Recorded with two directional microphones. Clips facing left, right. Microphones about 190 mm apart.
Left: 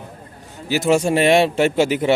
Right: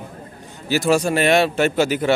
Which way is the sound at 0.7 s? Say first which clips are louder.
Left 1 dB; 20° left (ahead or behind).